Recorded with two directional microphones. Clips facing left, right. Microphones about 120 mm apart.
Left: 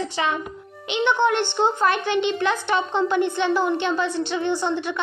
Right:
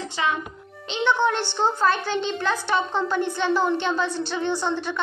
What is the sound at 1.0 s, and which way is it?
A woman's voice, 20° left (ahead or behind).